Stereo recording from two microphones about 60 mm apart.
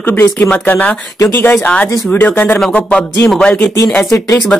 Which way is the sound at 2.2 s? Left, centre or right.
Left.